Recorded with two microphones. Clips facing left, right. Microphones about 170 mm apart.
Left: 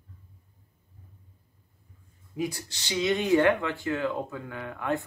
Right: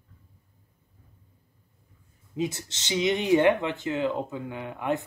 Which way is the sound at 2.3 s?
20° right (ahead or behind).